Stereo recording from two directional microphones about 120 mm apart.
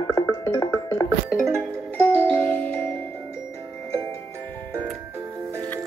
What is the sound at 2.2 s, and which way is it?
Music, 10° left (ahead or behind).